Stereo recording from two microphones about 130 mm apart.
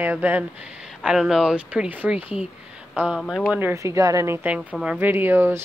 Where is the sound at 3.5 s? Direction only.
20° right (ahead or behind).